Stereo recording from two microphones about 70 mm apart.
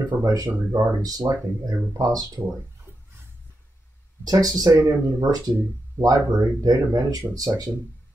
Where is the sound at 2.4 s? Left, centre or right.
Centre.